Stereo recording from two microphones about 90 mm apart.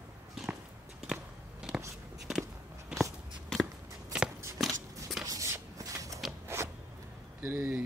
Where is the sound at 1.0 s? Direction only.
5° right (ahead or behind).